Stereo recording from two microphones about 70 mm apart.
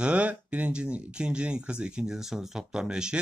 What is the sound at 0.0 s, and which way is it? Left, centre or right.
Speech, right.